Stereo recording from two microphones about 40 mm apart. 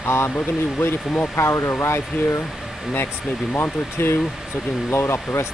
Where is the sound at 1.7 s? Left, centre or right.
Left.